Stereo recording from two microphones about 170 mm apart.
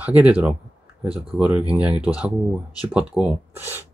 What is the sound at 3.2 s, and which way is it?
Speech, 25° right (ahead or behind).